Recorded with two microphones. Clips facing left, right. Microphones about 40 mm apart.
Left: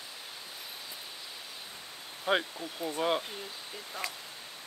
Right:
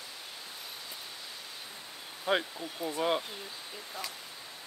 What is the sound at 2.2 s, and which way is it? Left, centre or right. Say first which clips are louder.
Speech: left 1 dB; centre.